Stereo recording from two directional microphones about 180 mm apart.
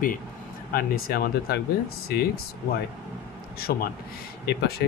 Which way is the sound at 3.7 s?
60° left (ahead or behind).